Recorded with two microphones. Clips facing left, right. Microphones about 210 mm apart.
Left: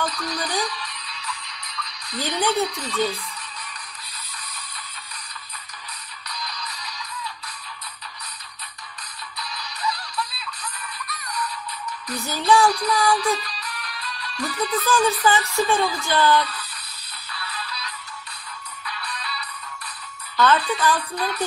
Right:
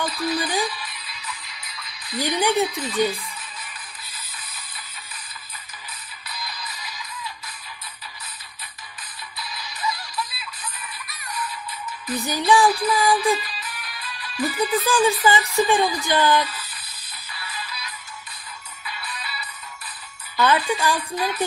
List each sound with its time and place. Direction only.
0.0 s music: 5° right (ahead or behind)
2.1 s speech: 15° right (ahead or behind)
2.6 s music: centre (ahead or behind)
6.2 s music: 5° right (ahead or behind)
9.4 s music: centre (ahead or behind)
12.3 s speech: 15° right (ahead or behind)
12.6 s music: 5° right (ahead or behind)
12.9 s speech: 15° right (ahead or behind)
13.2 s music: 5° right (ahead or behind)
14.8 s speech: 15° right (ahead or behind)
17.3 s music: 10° right (ahead or behind)
20.3 s speech: 10° right (ahead or behind)